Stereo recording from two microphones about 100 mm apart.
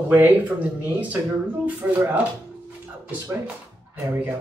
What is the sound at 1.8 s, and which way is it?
Speech, 15° right (ahead or behind).